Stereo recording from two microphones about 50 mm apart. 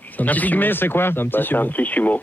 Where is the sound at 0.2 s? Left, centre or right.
Left.